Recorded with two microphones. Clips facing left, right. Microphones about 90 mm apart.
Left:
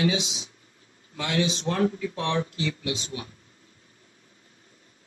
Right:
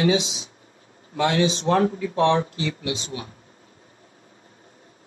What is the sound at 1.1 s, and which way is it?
Speech, 30° right (ahead or behind).